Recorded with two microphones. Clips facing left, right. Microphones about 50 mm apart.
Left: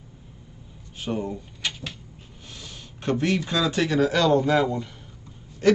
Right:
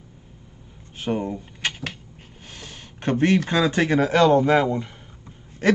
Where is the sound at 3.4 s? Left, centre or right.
Right.